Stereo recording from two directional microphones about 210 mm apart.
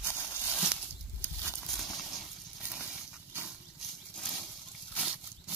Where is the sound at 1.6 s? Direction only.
Centre (ahead or behind).